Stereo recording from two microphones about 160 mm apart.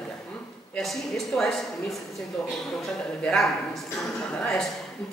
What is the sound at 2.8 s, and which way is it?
Speech, 5° left (ahead or behind).